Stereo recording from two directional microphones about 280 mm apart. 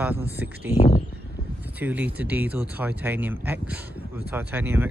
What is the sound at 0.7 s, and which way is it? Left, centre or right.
Speech, left.